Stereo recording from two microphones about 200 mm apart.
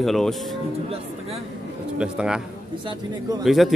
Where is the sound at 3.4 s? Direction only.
Centre (ahead or behind).